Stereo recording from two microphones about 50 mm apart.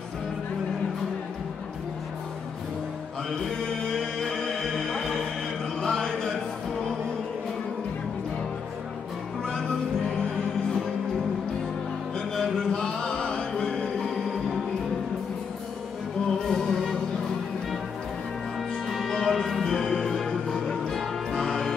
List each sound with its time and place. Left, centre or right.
3.9 s music: centre
5.8 s a sound: centre
9.4 s music: centre
12.4 s music: centre
16.3 s music: centre
18.9 s music: centre